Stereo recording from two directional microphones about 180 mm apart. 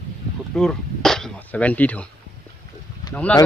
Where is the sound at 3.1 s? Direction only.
5° left (ahead or behind).